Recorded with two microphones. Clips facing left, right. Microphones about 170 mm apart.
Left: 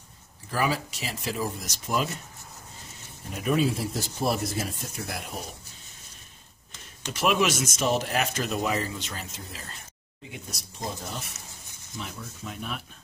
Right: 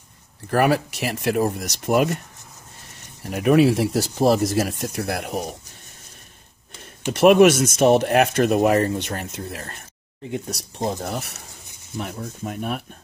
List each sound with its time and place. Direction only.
0.5 s speech: 65° right (ahead or behind)
3.3 s speech: 70° right (ahead or behind)
7.1 s speech: 55° right (ahead or behind)
10.9 s speech: 65° right (ahead or behind)
12.4 s speech: 50° right (ahead or behind)